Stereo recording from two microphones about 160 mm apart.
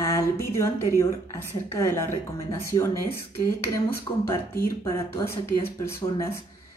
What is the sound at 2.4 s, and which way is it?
Speech, 15° left (ahead or behind).